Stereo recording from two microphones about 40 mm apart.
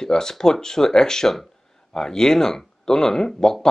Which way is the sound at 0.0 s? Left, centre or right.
Centre.